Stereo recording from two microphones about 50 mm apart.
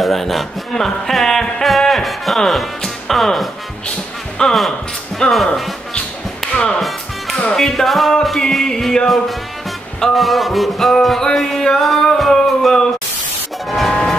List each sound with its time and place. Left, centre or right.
0.0 s music: centre
4.4 s speech: centre
6.5 s music: left
7.5 s music: centre